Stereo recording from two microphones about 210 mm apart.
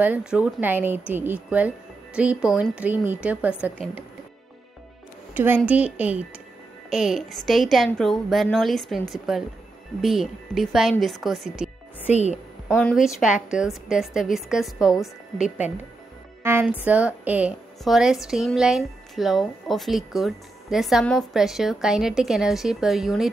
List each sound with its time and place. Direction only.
0.0 s a woman's voice: 5° right (ahead or behind)
5.3 s a woman's voice: 10° right (ahead or behind)
12.1 s a woman's voice: 30° left (ahead or behind)
12.6 s a woman's voice: 10° left (ahead or behind)
12.9 s a woman's voice: centre (ahead or behind)
15.4 s a woman's voice: 35° left (ahead or behind)
16.4 s a woman's voice: 10° right (ahead or behind)